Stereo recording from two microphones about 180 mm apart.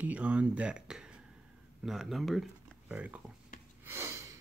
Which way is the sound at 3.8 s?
15° right (ahead or behind).